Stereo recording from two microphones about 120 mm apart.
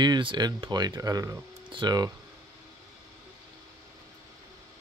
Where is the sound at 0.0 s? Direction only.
40° right (ahead or behind).